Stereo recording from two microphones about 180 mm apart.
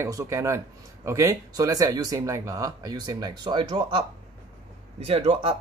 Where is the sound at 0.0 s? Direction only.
15° right (ahead or behind).